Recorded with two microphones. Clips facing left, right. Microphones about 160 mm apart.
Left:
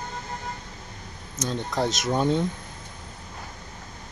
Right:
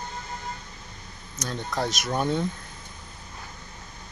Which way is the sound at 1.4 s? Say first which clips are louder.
Left 3 dB; 20° left (ahead or behind).